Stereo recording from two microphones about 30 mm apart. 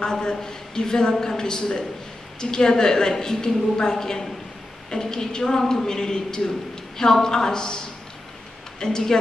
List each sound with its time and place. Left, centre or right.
0.0 s a woman's voice: left